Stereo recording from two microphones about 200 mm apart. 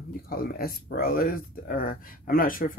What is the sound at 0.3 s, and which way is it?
Speech, 50° left (ahead or behind).